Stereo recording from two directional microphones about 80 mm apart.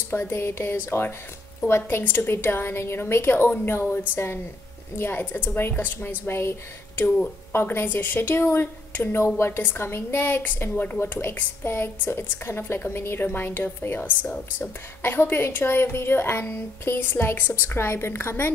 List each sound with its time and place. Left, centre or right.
0.1 s a woman's voice: left
7.5 s a woman's voice: left
15.0 s a woman's voice: left